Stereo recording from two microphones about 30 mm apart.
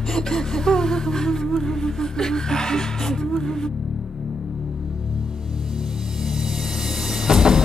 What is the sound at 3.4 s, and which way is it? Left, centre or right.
Music, centre.